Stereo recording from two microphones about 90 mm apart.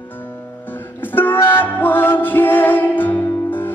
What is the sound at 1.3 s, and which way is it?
Music, 25° left (ahead or behind).